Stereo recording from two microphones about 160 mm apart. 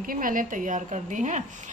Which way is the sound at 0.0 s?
60° right (ahead or behind).